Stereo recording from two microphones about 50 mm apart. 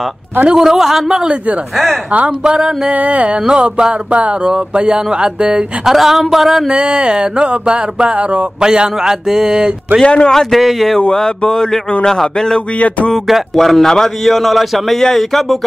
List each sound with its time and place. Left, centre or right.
0.6 s speech: centre
2.9 s speech: right
5.9 s speech: centre
6.7 s speech: right
10.0 s a sound: centre
10.3 s speech: centre
11.0 s speech: centre
12.7 s a sound: left
13.3 s speech: centre